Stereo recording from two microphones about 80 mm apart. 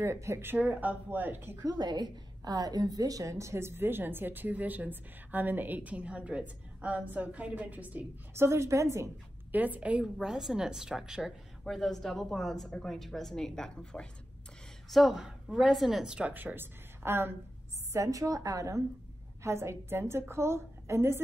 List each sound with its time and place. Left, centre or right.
0.0 s a woman's voice: right
0.6 s a woman's voice: centre
1.6 s a woman's voice: right
8.4 s a woman's voice: right
9.5 s a woman's voice: right
11.6 s a woman's voice: centre
14.9 s a woman's voice: centre; by 17.4 s right
17.9 s a woman's voice: right